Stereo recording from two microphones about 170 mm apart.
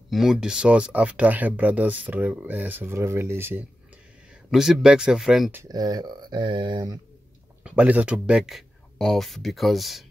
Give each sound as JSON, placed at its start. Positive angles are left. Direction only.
{"t": 0.1, "sound": "speech", "side_deg": 0}
{"t": 4.5, "sound": "speech", "side_deg": -5}
{"t": 5.5, "sound": "speech", "side_deg": -20}
{"t": 7.6, "sound": "speech", "side_deg": -10}